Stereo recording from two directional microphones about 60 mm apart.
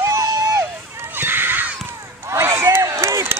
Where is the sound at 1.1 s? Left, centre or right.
Right.